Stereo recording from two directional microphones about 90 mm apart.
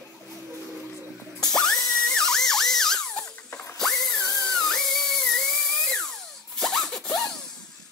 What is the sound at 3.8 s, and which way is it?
Dental drill, 5° left (ahead or behind).